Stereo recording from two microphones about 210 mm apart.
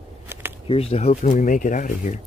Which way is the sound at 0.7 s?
30° left (ahead or behind).